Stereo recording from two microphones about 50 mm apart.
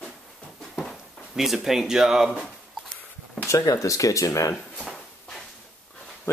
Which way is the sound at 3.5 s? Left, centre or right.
Left.